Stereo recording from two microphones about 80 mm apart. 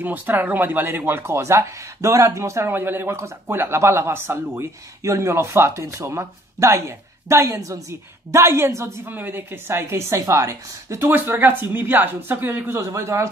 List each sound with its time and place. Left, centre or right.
0.0 s speech: right
9.1 s speech: right
11.1 s speech: right